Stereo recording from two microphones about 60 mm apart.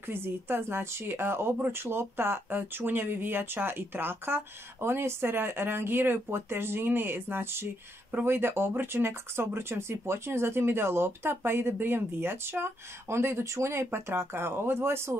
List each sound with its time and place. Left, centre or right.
0.0 s speech: right